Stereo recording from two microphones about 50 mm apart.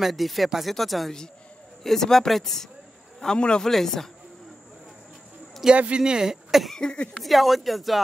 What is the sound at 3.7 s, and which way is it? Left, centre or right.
Speech, centre.